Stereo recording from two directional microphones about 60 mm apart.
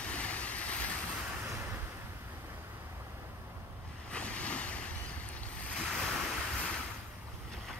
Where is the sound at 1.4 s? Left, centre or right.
Right.